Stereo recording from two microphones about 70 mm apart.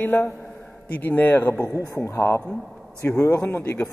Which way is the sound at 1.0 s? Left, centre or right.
Left.